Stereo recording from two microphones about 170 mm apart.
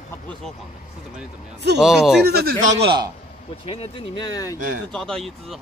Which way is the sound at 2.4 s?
65° right (ahead or behind).